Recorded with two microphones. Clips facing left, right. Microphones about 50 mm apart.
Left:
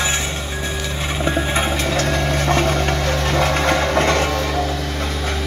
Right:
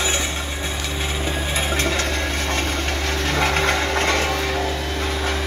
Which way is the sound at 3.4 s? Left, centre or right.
Centre.